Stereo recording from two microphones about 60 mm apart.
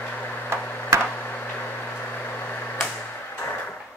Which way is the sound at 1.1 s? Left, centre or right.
Left.